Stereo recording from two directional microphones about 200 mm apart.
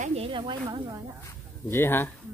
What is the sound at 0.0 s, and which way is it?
Speech, 30° right (ahead or behind).